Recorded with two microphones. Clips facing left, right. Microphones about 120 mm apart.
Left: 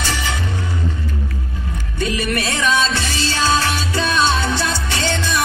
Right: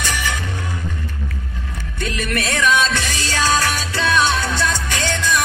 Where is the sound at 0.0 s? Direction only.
15° left (ahead or behind).